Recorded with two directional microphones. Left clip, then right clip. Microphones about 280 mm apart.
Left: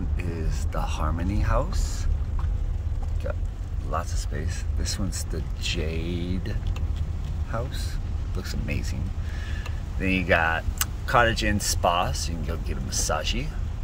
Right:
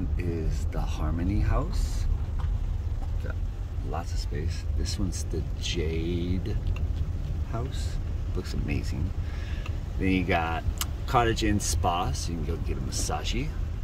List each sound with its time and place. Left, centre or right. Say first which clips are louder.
0.2 s speech: right 1 dB; centre
4.8 s speech: left 3 dB; centre
8.4 s speech: left 1 dB; centre
10.0 s speech: left 4 dB; centre